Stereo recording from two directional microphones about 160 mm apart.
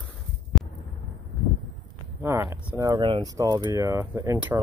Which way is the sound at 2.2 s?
15° right (ahead or behind).